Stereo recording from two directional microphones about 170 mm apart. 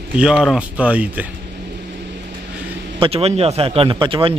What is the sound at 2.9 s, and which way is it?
A man's voice, 35° right (ahead or behind).